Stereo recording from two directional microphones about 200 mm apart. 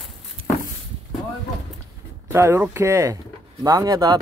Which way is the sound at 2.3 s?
15° right (ahead or behind).